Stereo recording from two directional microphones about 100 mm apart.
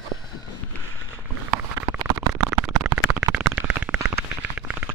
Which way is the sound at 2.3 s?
10° right (ahead or behind).